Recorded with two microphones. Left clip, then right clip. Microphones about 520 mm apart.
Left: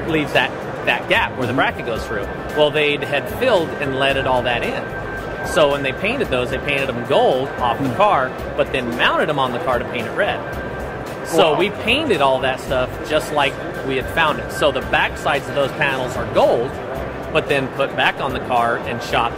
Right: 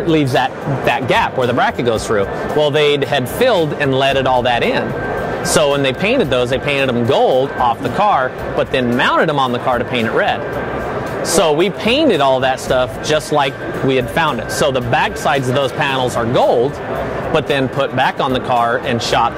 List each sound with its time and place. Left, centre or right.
0.1 s speech: right
11.3 s speech: right